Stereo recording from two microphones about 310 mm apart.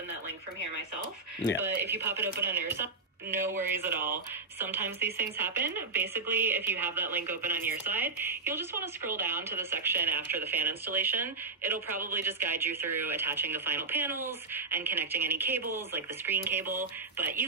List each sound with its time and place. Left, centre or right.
1.6 s speech: centre